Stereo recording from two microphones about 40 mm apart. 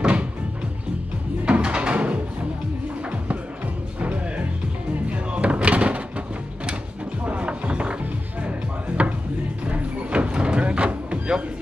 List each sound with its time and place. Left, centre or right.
0.0 s music: right
1.4 s a sound: right
4.0 s music: right
5.1 s a sound: right
8.4 s music: right
9.7 s sliding door: right